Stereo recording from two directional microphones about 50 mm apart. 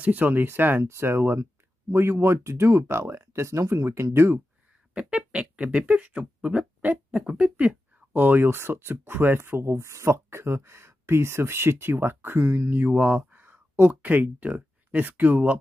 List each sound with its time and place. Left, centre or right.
0.0 s speech: right
0.8 s speech: right
3.8 s speech: right
4.9 s a sound: right
7.2 s speech: right
8.1 s speech: right
12.7 s speech: right
13.2 s a sound: right
14.0 s speech: right